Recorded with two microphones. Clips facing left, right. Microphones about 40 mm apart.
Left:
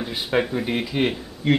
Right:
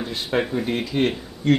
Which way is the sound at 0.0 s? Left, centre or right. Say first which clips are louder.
Left 1 dB; centre.